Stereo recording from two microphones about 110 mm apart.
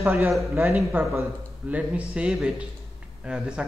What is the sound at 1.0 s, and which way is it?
Speech, 15° right (ahead or behind).